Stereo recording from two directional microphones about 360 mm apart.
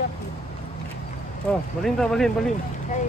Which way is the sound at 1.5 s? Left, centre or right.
Centre.